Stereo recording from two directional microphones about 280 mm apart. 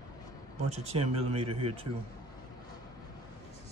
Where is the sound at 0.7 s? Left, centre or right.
Right.